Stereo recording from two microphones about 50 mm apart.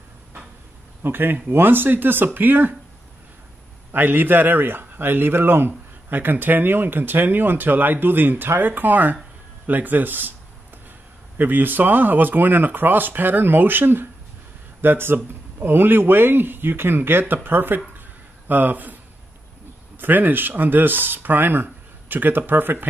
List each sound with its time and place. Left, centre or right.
1.0 s speech: right
3.9 s speech: right
11.3 s speech: right
20.0 s speech: right